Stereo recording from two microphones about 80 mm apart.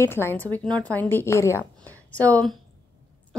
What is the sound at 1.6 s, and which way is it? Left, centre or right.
Speech, centre.